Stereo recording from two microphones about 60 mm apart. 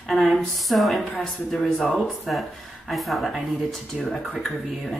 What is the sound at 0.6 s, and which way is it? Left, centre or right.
Speech, centre.